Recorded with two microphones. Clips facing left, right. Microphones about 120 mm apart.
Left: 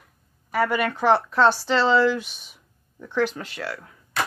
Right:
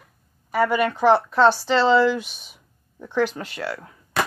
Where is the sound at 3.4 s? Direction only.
35° right (ahead or behind).